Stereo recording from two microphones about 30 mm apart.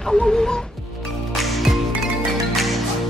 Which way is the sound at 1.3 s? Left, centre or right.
Centre.